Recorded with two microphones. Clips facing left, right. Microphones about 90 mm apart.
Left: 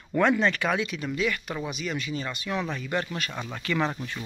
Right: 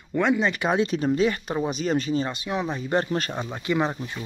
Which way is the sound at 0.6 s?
30° right (ahead or behind).